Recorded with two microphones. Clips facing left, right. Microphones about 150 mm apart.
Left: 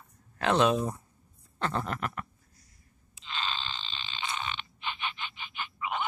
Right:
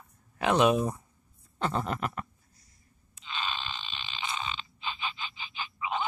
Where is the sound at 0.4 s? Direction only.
15° right (ahead or behind).